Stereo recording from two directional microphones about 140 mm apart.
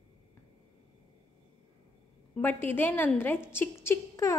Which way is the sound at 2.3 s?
10° left (ahead or behind).